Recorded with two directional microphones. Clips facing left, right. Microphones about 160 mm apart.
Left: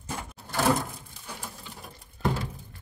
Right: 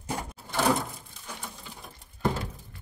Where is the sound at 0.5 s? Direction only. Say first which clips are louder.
Left 1 dB; centre (ahead or behind).